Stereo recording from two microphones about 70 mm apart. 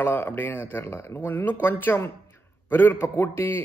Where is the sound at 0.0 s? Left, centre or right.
Left.